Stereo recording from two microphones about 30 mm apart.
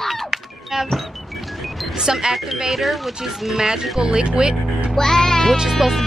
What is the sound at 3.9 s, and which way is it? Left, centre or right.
Speech, right.